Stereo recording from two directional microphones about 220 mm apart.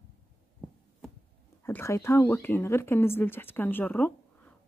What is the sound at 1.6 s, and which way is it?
Speech, 10° left (ahead or behind).